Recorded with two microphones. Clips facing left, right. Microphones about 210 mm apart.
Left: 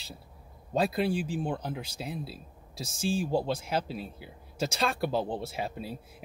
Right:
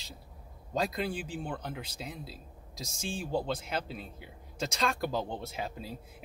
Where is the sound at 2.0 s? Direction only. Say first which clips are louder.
Left 5 dB; 5° left (ahead or behind).